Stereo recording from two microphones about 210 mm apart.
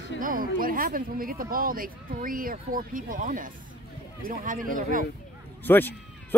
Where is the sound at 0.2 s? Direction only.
40° right (ahead or behind).